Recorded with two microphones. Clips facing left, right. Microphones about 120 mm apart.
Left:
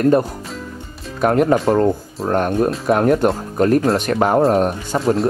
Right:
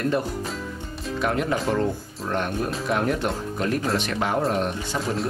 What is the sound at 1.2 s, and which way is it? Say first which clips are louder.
Speech: left 10 dB; 45° left (ahead or behind).